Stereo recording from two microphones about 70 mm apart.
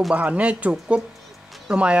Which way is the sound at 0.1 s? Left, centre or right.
Right.